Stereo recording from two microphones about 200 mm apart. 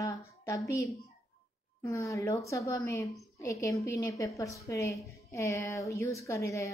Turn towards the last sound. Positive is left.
turn(degrees=15)  # may be behind; listen again after turning